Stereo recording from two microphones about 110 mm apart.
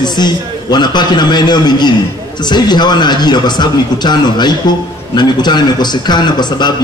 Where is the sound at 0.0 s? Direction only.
40° left (ahead or behind).